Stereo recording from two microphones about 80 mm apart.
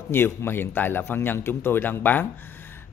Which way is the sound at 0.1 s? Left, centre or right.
Left.